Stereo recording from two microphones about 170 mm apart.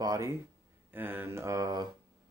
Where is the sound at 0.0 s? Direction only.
20° right (ahead or behind).